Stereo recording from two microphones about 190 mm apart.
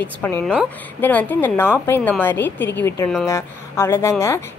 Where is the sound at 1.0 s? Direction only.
10° left (ahead or behind).